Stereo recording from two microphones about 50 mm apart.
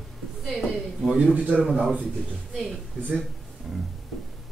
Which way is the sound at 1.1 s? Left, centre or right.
Right.